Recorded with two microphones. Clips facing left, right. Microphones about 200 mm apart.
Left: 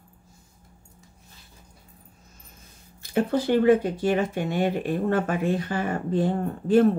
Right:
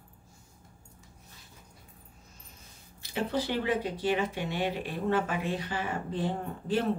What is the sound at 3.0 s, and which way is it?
Speech, 50° left (ahead or behind).